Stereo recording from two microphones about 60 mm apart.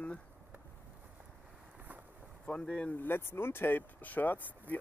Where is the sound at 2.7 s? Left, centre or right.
Left.